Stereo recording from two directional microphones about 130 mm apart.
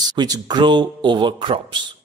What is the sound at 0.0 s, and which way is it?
A man's voice, 30° right (ahead or behind).